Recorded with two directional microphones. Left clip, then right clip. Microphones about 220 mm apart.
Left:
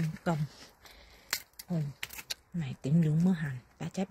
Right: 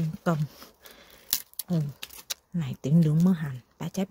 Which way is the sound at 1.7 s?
35° right (ahead or behind).